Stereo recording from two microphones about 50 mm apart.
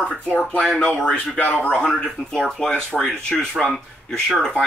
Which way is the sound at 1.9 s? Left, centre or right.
Centre.